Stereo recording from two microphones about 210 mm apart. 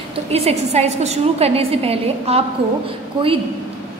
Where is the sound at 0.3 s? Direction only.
30° right (ahead or behind).